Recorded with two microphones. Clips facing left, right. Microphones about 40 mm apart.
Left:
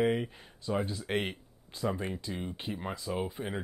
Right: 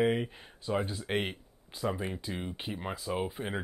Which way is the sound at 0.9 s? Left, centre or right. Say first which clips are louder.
Even; centre.